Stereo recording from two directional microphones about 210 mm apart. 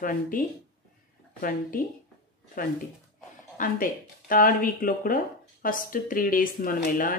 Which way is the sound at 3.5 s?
40° left (ahead or behind).